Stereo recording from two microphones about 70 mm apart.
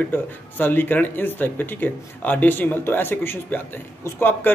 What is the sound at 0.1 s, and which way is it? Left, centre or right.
Speech, left.